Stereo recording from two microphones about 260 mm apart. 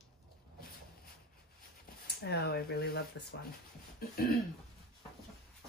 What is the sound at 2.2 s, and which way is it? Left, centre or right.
Speech, left.